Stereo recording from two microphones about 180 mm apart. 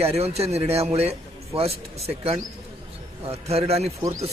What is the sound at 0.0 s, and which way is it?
A man's voice, 35° right (ahead or behind).